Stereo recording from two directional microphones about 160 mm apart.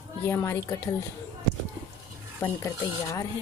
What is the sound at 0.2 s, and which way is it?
Speech, 15° left (ahead or behind).